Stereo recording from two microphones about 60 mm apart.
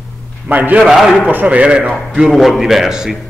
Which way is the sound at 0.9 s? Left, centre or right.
Centre.